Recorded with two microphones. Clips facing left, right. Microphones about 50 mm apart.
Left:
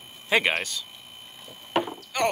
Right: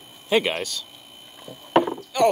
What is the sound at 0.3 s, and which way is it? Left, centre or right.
Speech, left.